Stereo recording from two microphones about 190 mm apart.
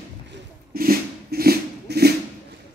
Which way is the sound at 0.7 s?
50° right (ahead or behind).